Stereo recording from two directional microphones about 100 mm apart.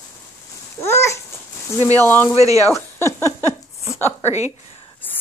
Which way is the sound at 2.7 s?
30° left (ahead or behind).